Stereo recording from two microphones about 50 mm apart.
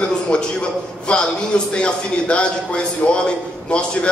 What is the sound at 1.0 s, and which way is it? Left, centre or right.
A man's voice, centre.